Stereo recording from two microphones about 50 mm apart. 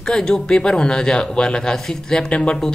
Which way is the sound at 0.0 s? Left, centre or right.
Centre.